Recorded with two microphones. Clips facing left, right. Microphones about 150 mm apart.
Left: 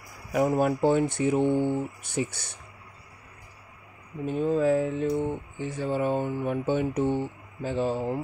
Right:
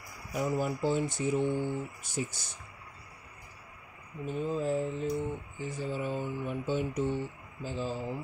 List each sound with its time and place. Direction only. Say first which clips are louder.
0.3 s speech: left 8 dB; 60° left (ahead or behind)
4.3 s speech: left 8 dB; 65° left (ahead or behind)